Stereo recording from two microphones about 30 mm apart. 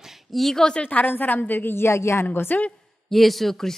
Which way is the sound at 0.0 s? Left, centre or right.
Centre.